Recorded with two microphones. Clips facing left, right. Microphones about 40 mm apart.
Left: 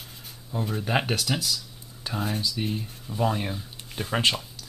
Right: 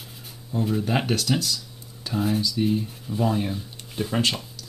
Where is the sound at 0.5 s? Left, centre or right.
Centre.